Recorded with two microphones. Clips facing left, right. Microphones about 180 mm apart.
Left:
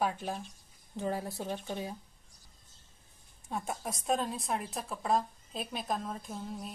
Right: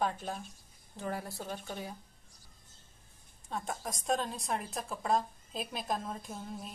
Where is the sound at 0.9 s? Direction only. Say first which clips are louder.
Left 4 dB; 20° left (ahead or behind).